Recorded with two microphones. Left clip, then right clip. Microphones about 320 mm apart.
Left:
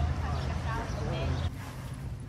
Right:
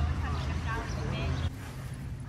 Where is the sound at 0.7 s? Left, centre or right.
Left.